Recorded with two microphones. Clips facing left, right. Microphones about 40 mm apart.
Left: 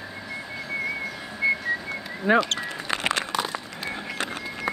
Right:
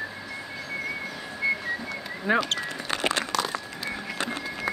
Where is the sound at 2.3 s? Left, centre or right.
Centre.